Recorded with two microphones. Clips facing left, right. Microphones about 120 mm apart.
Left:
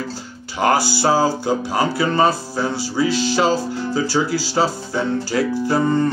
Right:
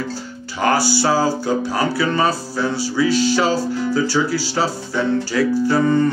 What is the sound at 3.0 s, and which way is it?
Music, 40° left (ahead or behind).